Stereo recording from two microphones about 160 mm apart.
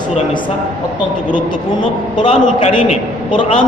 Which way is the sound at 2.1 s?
35° left (ahead or behind).